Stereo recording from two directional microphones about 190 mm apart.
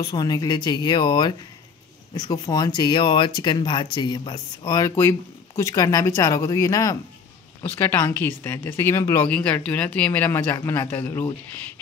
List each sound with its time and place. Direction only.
0.0 s speech: 20° left (ahead or behind)